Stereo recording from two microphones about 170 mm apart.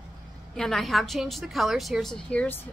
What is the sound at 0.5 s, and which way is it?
A woman's voice, centre (ahead or behind).